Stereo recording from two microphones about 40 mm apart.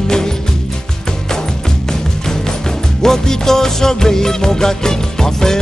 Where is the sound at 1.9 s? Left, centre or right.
Centre.